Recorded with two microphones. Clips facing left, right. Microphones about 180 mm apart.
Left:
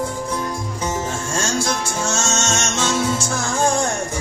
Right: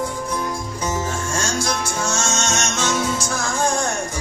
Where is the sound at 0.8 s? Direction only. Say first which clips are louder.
Even; 25° left (ahead or behind).